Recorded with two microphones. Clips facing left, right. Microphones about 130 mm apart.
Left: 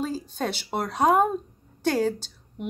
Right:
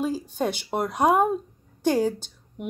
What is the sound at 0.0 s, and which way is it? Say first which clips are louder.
Speech: right 3 dB; 10° right (ahead or behind).